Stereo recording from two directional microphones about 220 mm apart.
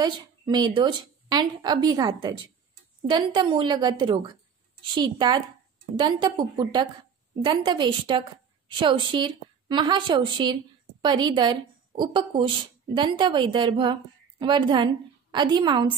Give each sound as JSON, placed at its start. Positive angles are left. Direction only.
{"t": 0.0, "sound": "a woman's voice", "side_deg": -20}
{"t": 4.9, "sound": "a woman's voice", "side_deg": -20}